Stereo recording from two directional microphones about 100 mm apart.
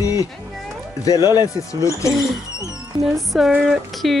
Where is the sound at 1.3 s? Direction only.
40° left (ahead or behind).